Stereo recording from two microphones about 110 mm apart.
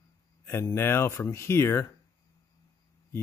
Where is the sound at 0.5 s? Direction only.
25° left (ahead or behind).